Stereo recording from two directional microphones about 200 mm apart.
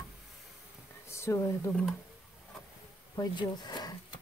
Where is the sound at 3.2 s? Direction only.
20° left (ahead or behind).